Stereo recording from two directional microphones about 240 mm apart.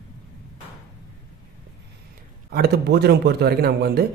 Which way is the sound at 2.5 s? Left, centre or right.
Right.